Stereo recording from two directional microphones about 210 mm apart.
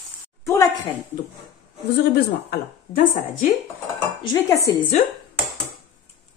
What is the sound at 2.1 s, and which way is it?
A woman's voice, 45° left (ahead or behind).